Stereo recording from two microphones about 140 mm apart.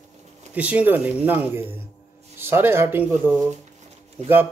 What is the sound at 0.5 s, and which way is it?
Speech, 10° right (ahead or behind).